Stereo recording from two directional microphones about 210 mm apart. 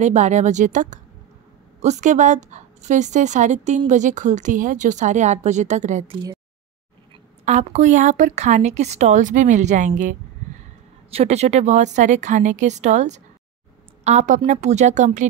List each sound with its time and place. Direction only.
0.0 s a woman's voice: 35° right (ahead or behind)
7.4 s a woman's voice: 35° right (ahead or behind)